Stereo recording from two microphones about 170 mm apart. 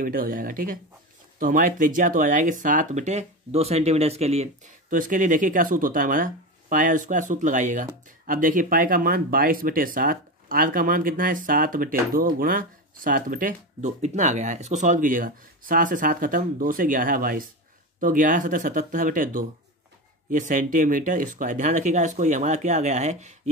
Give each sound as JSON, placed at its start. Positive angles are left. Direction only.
{"t": 0.0, "sound": "speech", "side_deg": -55}